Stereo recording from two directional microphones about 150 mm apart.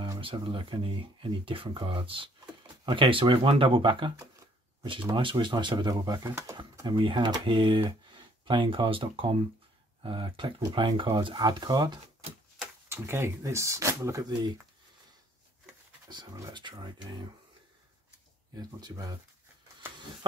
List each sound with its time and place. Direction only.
0.2 s speech: 35° right (ahead or behind)
5.1 s speech: 35° right (ahead or behind)
12.5 s speech: 15° right (ahead or behind)
16.1 s speech: 25° right (ahead or behind)
18.6 s speech: 25° right (ahead or behind)